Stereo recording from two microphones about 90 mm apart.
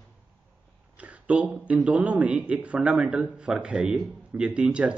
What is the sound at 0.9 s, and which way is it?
Speech, 15° right (ahead or behind).